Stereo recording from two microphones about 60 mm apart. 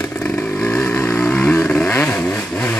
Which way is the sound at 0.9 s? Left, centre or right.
Left.